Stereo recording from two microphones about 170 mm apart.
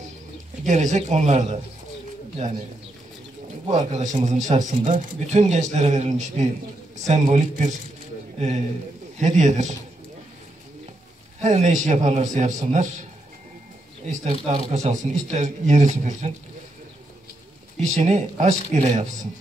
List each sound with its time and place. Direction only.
0.7 s speech: 45° right (ahead or behind)
3.7 s speech: 45° right (ahead or behind)
11.4 s speech: 45° right (ahead or behind)
14.0 s speech: 40° right (ahead or behind)
17.9 s speech: 40° right (ahead or behind)